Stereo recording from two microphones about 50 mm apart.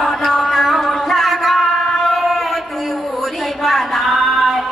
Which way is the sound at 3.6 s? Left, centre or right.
Centre.